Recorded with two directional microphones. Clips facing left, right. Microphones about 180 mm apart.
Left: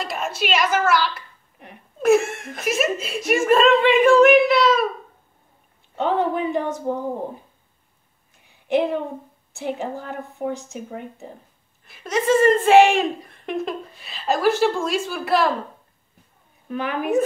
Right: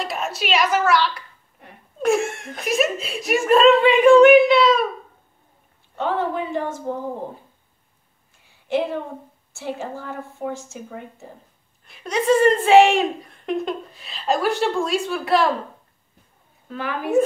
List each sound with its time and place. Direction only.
0.0 s a woman's voice: centre (ahead or behind)
5.9 s a woman's voice: 20° left (ahead or behind)
8.5 s a sound: 20° left (ahead or behind)
9.5 s a woman's voice: 20° left (ahead or behind)
11.8 s a woman's voice: centre (ahead or behind)
16.6 s a woman's voice: 20° left (ahead or behind)